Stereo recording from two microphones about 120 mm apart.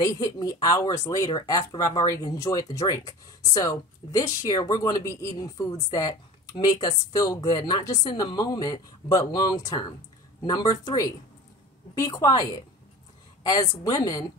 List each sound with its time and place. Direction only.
0.0 s speech: 30° left (ahead or behind)